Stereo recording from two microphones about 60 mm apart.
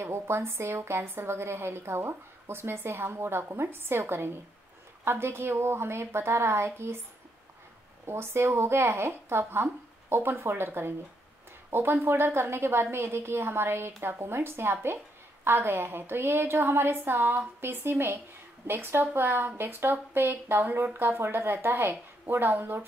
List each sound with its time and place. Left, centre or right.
0.0 s a woman's voice: right
8.1 s a woman's voice: right